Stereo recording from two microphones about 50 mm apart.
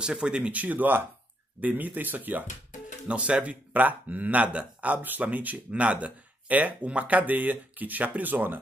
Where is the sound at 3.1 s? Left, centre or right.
Right.